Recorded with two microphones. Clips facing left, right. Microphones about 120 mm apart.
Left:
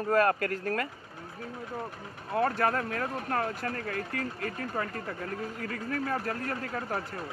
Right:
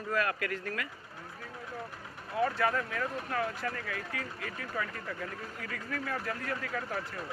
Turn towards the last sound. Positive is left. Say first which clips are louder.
# left 2 dB
turn(degrees=45)  # may be behind; listen again after turning